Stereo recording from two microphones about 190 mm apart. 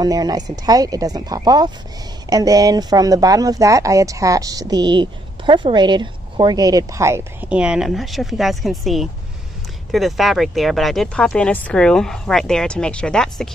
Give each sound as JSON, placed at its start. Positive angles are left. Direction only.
{"t": 0.0, "sound": "speech", "side_deg": -20}